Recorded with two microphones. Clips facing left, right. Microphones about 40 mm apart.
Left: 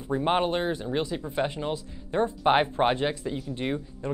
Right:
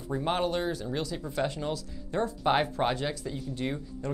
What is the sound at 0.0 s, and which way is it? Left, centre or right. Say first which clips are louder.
Speech: left 4 dB; left.